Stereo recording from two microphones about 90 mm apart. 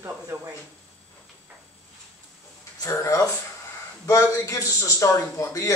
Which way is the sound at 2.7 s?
35° left (ahead or behind).